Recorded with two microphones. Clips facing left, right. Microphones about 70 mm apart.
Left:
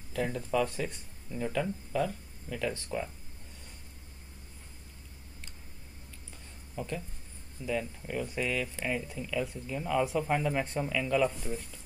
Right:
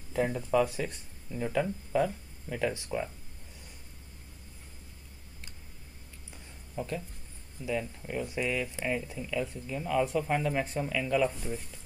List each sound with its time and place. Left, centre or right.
0.1 s speech: centre
0.5 s speech: centre
1.5 s speech: centre
6.7 s a sound: centre
7.6 s speech: centre